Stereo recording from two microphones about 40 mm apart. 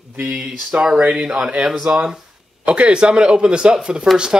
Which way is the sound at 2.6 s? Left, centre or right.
Right.